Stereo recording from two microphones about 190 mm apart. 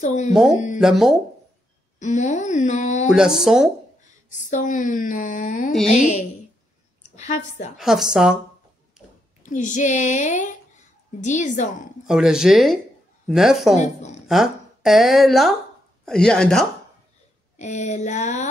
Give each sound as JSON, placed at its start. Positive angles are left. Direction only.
{"t": 0.0, "sound": "speech", "side_deg": 35}
{"t": 0.3, "sound": "a woman's voice", "side_deg": 0}
{"t": 2.0, "sound": "speech", "side_deg": 40}
{"t": 3.1, "sound": "a woman's voice", "side_deg": -5}
{"t": 4.3, "sound": "speech", "side_deg": 40}
{"t": 7.2, "sound": "speech", "side_deg": 40}
{"t": 7.7, "sound": "a woman's voice", "side_deg": 0}
{"t": 9.4, "sound": "speech", "side_deg": 40}
{"t": 12.1, "sound": "a woman's voice", "side_deg": -5}
{"t": 13.7, "sound": "speech", "side_deg": 35}
{"t": 14.2, "sound": "a woman's voice", "side_deg": 0}
{"t": 17.6, "sound": "speech", "side_deg": 40}